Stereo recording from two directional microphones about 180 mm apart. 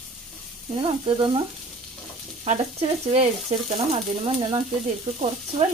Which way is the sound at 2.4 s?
40° right (ahead or behind).